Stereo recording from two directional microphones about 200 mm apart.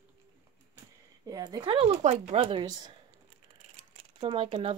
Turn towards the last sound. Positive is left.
turn(degrees=-30)  # may be behind; listen again after turning